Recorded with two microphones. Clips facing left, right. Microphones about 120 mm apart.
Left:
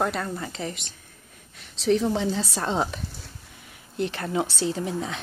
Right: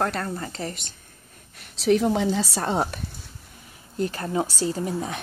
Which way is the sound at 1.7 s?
5° right (ahead or behind).